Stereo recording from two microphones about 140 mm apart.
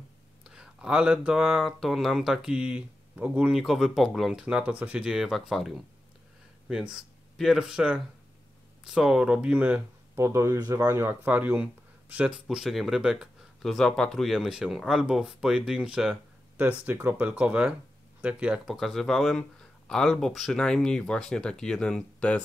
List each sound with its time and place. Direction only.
0.4 s speech: 5° right (ahead or behind)
6.7 s speech: 5° right (ahead or behind)
10.1 s speech: 20° right (ahead or behind); by 22.4 s 5° left (ahead or behind)